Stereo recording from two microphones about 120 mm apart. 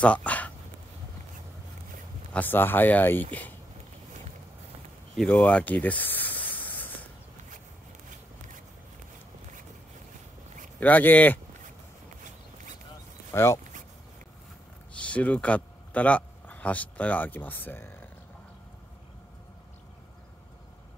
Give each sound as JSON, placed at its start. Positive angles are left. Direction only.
{"t": 0.0, "sound": "a sound", "side_deg": 10}
{"t": 2.3, "sound": "speech", "side_deg": 15}
{"t": 5.3, "sound": "snake", "side_deg": 10}
{"t": 10.8, "sound": "speech", "side_deg": 15}
{"t": 13.3, "sound": "speech", "side_deg": 20}
{"t": 15.0, "sound": "speech", "side_deg": 10}